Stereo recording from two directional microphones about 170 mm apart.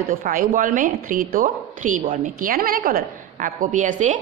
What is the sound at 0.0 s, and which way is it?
Speech, 55° right (ahead or behind).